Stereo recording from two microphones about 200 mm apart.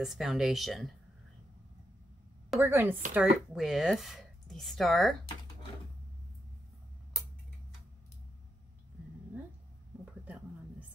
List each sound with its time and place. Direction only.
0.0 s speech: centre (ahead or behind)
2.6 s speech: 10° right (ahead or behind)
10.2 s a sound: 10° right (ahead or behind)